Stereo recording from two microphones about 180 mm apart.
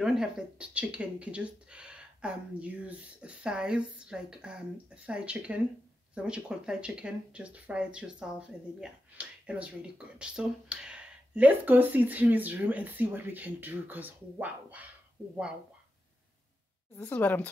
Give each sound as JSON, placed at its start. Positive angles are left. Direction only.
{"t": 0.0, "sound": "speech", "side_deg": -5}
{"t": 16.9, "sound": "a woman's voice", "side_deg": 10}